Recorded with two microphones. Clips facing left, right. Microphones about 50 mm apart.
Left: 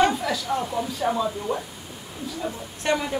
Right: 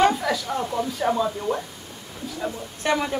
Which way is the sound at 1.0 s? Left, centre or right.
Centre.